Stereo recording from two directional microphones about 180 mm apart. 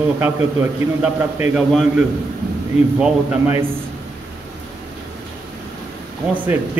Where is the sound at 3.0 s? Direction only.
10° right (ahead or behind).